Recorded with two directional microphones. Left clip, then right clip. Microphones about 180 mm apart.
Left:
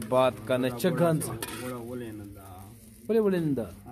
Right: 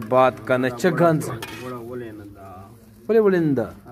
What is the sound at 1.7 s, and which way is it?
Dishes, 30° left (ahead or behind).